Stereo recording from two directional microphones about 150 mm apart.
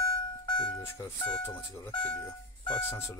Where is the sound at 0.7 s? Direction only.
20° left (ahead or behind).